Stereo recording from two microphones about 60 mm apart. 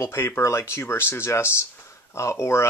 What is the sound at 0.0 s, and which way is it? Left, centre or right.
Speech, left.